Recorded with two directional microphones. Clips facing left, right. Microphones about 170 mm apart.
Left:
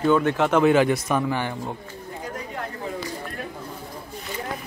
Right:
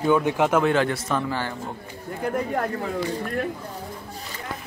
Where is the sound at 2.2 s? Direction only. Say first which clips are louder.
Right 9 dB; 55° right (ahead or behind).